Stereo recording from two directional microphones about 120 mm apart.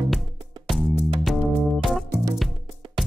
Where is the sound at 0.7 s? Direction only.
Centre (ahead or behind).